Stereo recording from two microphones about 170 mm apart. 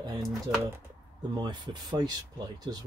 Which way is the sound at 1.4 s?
25° right (ahead or behind).